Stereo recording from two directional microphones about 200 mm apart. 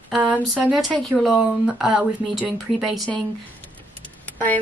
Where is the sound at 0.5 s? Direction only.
5° right (ahead or behind).